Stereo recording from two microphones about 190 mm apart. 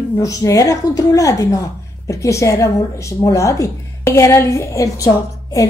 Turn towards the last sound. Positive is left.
turn(degrees=15)  # may be behind; listen again after turning